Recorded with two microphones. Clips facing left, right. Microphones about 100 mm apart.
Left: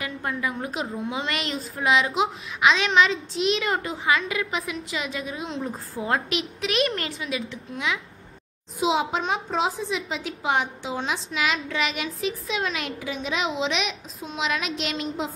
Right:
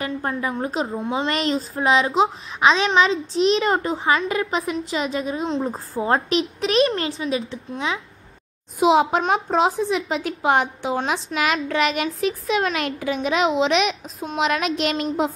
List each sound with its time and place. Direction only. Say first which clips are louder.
0.0 s a woman's voice: right 4 dB; 35° right (ahead or behind)
8.7 s a child's voice: right 7 dB; 50° right (ahead or behind)